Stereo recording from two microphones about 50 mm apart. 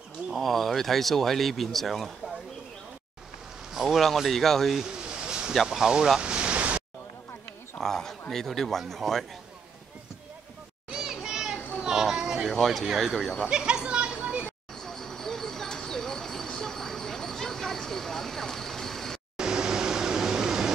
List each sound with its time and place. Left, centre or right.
0.3 s speech: centre
3.7 s speech: centre
4.9 s a sound: centre
5.7 s speech: centre
7.8 s speech: centre
10.9 s children playing: centre
11.8 s a sound: centre
12.4 s speech: centre
13.5 s children playing: centre
14.8 s a sound: centre
19.3 s air conditioning: centre